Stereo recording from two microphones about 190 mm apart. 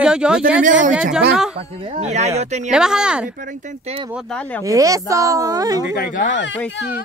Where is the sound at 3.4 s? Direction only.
40° right (ahead or behind).